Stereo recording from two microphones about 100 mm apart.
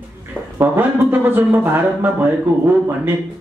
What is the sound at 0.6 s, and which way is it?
Speech, 20° right (ahead or behind).